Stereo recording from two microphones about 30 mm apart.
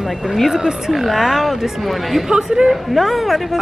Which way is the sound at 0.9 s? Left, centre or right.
Centre.